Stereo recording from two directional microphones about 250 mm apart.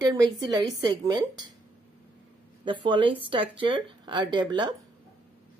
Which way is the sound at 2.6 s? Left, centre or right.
Centre.